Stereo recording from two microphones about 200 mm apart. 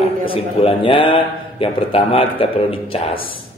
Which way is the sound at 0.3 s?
25° left (ahead or behind).